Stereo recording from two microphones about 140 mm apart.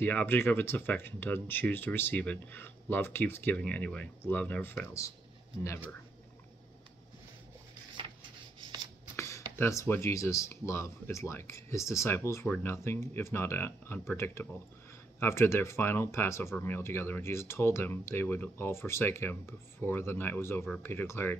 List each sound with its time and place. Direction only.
0.0 s speech: 10° left (ahead or behind)
9.1 s speech: 20° left (ahead or behind)